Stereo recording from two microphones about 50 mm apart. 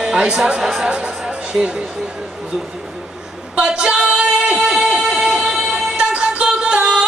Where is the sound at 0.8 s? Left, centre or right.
Right.